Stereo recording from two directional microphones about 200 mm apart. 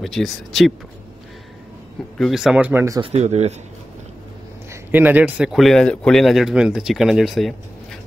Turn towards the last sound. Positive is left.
turn(degrees=0)  # may be behind; listen again after turning